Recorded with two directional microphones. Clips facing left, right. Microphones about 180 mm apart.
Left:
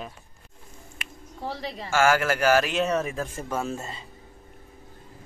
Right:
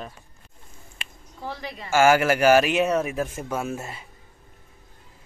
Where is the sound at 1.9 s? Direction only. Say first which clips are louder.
Right 4 dB; 15° right (ahead or behind).